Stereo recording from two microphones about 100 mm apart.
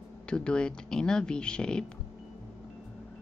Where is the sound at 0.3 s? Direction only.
10° left (ahead or behind).